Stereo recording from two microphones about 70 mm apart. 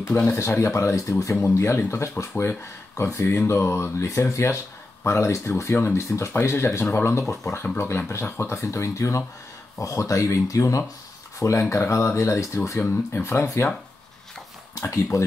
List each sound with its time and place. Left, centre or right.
0.1 s speech: left
0.4 s speech: left
1.4 s speech: left
12.8 s speech: left
14.8 s speech: left